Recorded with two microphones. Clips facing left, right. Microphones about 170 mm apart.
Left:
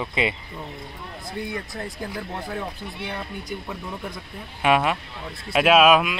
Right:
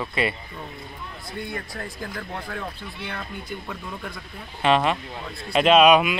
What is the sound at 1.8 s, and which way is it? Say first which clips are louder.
Speech: left 2 dB; 15° left (ahead or behind).